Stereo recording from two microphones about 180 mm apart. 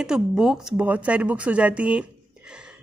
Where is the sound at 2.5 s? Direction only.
5° right (ahead or behind).